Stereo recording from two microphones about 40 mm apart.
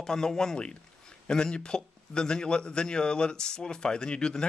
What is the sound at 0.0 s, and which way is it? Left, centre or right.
A man's voice, centre.